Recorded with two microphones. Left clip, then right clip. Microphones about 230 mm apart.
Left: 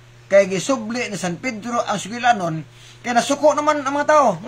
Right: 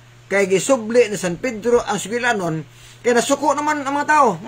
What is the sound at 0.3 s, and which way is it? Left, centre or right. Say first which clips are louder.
A man's voice: left 1 dB; centre.